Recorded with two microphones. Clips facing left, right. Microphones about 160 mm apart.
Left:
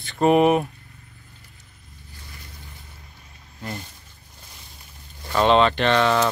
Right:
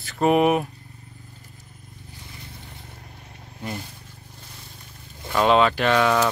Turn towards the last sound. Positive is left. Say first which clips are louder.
# even
turn(degrees=-5)  # may be behind; listen again after turning